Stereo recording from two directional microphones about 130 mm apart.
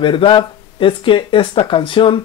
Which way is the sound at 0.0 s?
40° left (ahead or behind).